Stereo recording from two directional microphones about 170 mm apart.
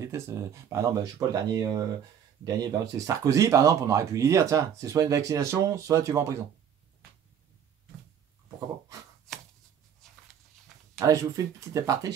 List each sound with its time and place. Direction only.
0.0 s speech: 15° right (ahead or behind)
11.0 s speech: 20° right (ahead or behind)